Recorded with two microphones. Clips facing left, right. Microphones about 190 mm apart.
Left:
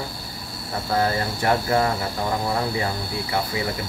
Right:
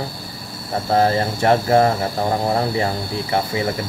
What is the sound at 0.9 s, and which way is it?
Speech, 25° right (ahead or behind).